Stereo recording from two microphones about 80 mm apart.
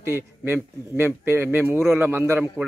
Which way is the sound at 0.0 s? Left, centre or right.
Right.